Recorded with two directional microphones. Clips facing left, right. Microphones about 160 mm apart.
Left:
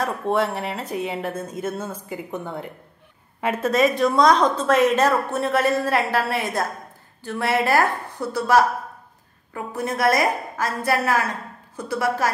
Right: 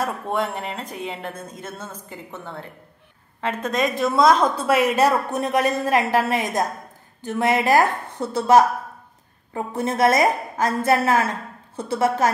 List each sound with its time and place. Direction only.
0.0 s a woman's voice: centre (ahead or behind); by 12.3 s 25° right (ahead or behind)